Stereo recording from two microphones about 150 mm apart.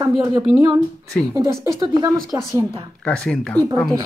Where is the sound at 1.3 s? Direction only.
20° right (ahead or behind).